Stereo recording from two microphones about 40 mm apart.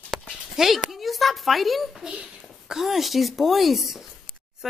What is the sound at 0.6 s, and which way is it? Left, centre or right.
Speech, centre.